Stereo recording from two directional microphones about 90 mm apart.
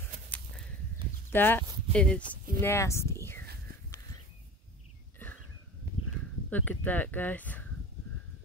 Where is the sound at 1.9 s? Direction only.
10° left (ahead or behind).